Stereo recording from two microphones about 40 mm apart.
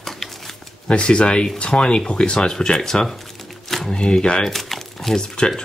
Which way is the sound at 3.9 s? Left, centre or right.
Left.